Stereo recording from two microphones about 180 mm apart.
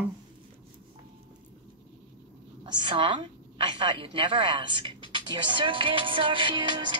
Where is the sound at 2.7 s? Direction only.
25° right (ahead or behind).